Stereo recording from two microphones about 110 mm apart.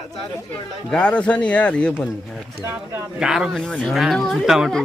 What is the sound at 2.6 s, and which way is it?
Speech, 20° right (ahead or behind).